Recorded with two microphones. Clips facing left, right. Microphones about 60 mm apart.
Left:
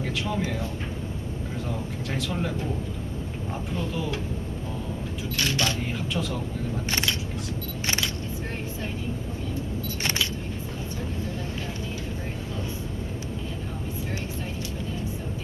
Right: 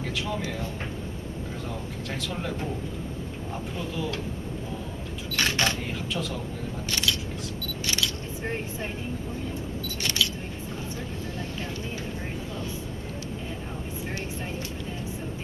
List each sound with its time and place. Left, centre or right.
0.0 s a sound: centre
2.1 s speech: centre
3.7 s speech: centre
5.3 s speech: right
5.9 s speech: centre
6.9 s speech: left
7.8 s single-lens reflex camera: left